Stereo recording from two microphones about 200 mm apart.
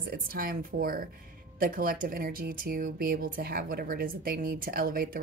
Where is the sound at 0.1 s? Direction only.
45° right (ahead or behind).